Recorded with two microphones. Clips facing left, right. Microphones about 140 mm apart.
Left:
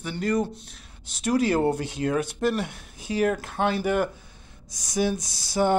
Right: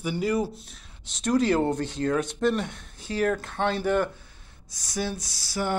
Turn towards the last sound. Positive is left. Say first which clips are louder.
# left 6 dB
turn(degrees=20)  # may be behind; listen again after turning